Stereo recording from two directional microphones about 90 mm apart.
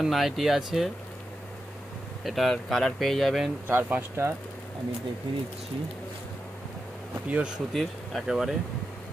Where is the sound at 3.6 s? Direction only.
20° right (ahead or behind).